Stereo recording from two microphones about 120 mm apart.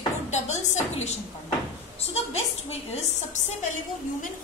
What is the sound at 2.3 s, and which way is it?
Speech, 65° left (ahead or behind).